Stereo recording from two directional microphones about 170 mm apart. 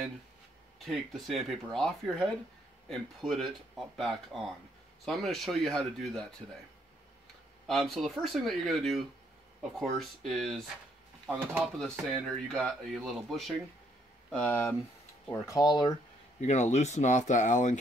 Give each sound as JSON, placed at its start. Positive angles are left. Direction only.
{"t": 0.7, "sound": "speech", "side_deg": 0}
{"t": 7.6, "sound": "speech", "side_deg": 0}
{"t": 15.4, "sound": "speech", "side_deg": 20}
{"t": 16.3, "sound": "speech", "side_deg": 40}